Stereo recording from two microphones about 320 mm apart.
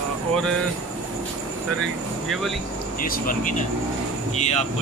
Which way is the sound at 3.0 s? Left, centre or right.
Left.